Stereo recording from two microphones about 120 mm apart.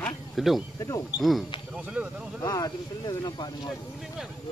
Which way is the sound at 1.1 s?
Centre (ahead or behind).